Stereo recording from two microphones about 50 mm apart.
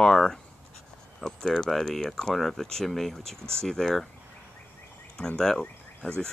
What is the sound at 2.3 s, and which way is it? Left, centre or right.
Speech, centre.